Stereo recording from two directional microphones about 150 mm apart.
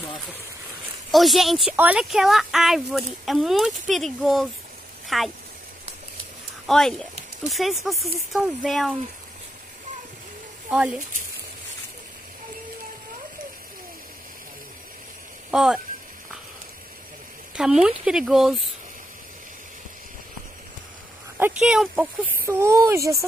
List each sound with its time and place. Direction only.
1.1 s speech: centre (ahead or behind)
5.0 s a sound: centre (ahead or behind)
6.7 s speech: 5° left (ahead or behind)
10.7 s speech: 5° right (ahead or behind)
15.5 s speech: 5° right (ahead or behind)
17.6 s speech: 5° right (ahead or behind)
21.5 s speech: 5° right (ahead or behind)